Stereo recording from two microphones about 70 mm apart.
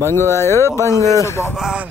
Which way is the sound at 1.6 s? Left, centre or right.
Centre.